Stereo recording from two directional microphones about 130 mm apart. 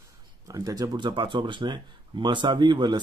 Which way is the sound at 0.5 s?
30° right (ahead or behind).